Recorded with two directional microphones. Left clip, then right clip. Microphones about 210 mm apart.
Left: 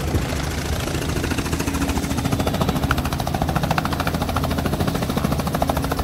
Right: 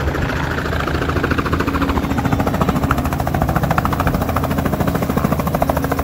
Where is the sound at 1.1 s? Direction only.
55° left (ahead or behind).